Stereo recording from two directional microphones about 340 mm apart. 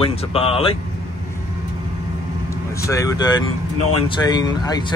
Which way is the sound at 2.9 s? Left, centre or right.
Centre.